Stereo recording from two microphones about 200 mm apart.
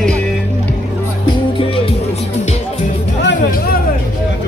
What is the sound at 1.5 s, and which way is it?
Music, 25° left (ahead or behind).